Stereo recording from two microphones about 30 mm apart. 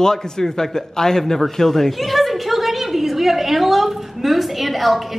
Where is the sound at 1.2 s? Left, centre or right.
Centre.